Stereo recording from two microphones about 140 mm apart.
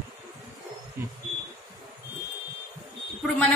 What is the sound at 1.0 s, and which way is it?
Speech, 15° right (ahead or behind).